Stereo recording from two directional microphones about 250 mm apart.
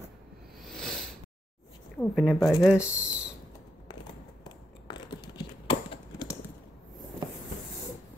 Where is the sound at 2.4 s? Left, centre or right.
Centre.